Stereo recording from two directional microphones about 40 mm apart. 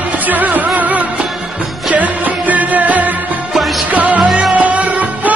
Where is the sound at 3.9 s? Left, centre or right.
Right.